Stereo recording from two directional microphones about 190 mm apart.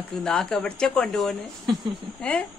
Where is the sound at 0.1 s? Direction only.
5° left (ahead or behind).